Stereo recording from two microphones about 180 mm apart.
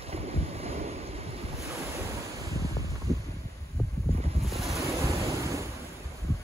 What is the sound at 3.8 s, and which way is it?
Boat, 15° left (ahead or behind).